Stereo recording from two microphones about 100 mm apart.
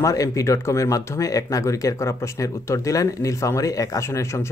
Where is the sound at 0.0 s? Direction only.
35° left (ahead or behind).